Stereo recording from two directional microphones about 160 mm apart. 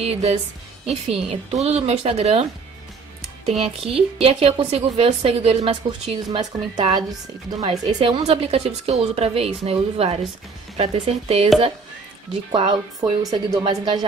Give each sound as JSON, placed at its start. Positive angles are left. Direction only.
{"t": 0.0, "sound": "speech", "side_deg": -40}
{"t": 3.4, "sound": "speech", "side_deg": -40}
{"t": 6.2, "sound": "speech", "side_deg": -25}
{"t": 12.4, "sound": "speech", "side_deg": -25}